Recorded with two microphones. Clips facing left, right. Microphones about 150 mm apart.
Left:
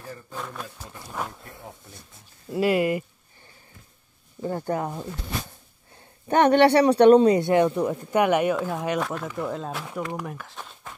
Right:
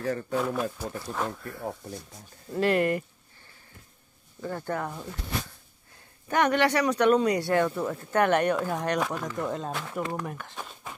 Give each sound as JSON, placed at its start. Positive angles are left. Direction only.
{"t": 0.0, "sound": "speech", "side_deg": -75}
{"t": 0.4, "sound": "speech", "side_deg": -5}
{"t": 0.9, "sound": "speech", "side_deg": 10}
{"t": 1.6, "sound": "speech", "side_deg": -40}
{"t": 2.5, "sound": "speech", "side_deg": 10}
{"t": 4.4, "sound": "speech", "side_deg": 20}
{"t": 6.2, "sound": "speech", "side_deg": 30}